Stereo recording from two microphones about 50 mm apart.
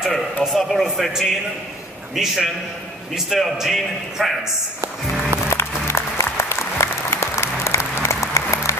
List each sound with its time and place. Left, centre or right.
0.0 s a man's voice: centre
5.5 s applause: left